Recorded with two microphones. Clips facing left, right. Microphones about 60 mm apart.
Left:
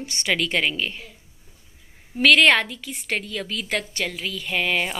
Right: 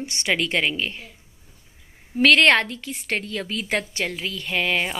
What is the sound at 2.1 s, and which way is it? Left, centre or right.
A woman's voice, centre.